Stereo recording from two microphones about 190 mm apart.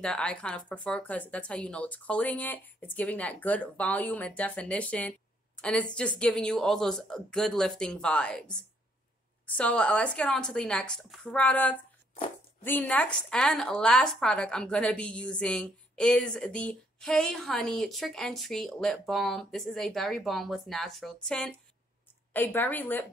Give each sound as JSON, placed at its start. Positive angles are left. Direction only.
{"t": 0.0, "sound": "a woman's voice", "side_deg": 5}